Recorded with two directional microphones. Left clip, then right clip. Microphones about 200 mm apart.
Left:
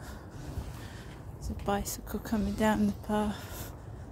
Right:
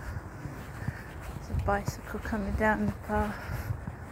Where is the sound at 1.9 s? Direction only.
55° left (ahead or behind).